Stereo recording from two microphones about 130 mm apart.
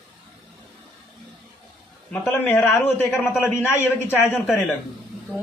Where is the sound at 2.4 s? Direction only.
10° left (ahead or behind).